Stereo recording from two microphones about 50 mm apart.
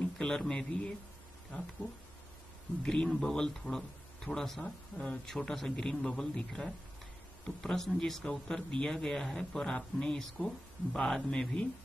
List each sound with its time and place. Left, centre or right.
0.2 s a man's voice: centre
2.8 s a man's voice: centre